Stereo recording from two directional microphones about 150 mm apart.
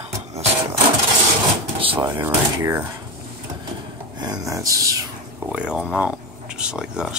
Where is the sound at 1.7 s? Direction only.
35° right (ahead or behind).